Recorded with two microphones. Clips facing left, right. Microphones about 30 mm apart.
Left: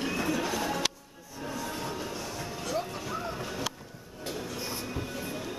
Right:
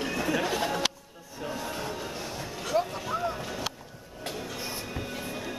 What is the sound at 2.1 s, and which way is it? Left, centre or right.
Music, right.